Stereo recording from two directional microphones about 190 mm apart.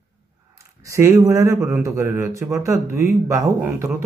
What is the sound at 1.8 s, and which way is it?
Speech, 15° right (ahead or behind).